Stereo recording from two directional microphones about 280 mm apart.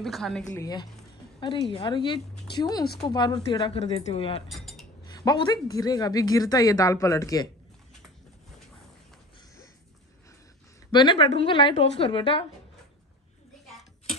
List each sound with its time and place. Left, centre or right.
0.0 s a woman's voice: centre
0.6 s a woman's voice: centre
4.5 s cutlery: centre
5.0 s a woman's voice: centre
10.9 s a woman's voice: centre